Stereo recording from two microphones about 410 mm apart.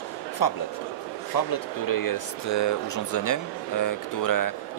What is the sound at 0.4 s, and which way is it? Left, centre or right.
Speech, left.